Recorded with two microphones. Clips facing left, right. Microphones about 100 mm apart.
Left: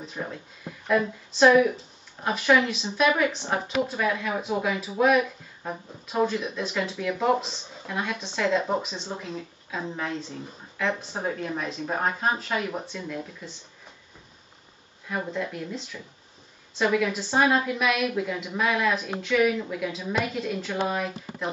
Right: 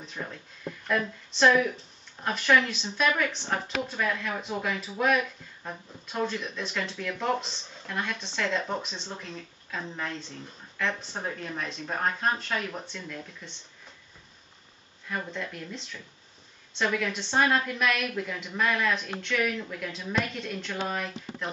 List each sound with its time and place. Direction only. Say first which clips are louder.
0.2 s a woman's voice: left 2 dB; 10° left (ahead or behind)
15.0 s a woman's voice: left 4 dB; 5° left (ahead or behind)